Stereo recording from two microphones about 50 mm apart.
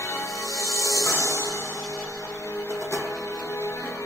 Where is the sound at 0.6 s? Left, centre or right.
Left.